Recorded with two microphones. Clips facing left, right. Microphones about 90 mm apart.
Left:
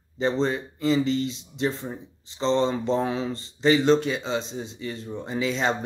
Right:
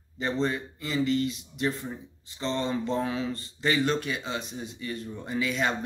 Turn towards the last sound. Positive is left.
turn(degrees=25)  # may be behind; listen again after turning